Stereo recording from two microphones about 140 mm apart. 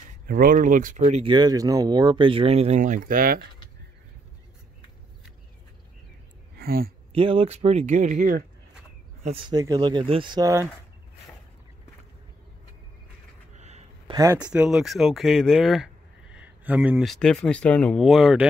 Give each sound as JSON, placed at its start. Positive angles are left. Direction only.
{"t": 0.3, "sound": "speech", "side_deg": -90}
{"t": 1.0, "sound": "speech", "side_deg": -50}
{"t": 1.3, "sound": "speech", "side_deg": -30}
{"t": 6.6, "sound": "speech", "side_deg": -90}
{"t": 7.1, "sound": "speech", "side_deg": -40}
{"t": 9.2, "sound": "speech", "side_deg": -40}
{"t": 9.5, "sound": "speech", "side_deg": -30}
{"t": 13.6, "sound": "a sound", "side_deg": -50}
{"t": 14.1, "sound": "speech", "side_deg": -20}
{"t": 14.5, "sound": "speech", "side_deg": -5}